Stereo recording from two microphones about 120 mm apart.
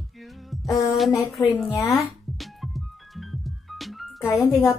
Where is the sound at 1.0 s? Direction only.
Centre (ahead or behind).